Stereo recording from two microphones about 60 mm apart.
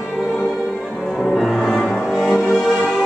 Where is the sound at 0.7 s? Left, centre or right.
Centre.